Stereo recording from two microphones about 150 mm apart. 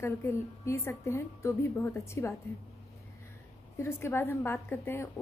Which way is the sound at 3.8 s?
15° left (ahead or behind).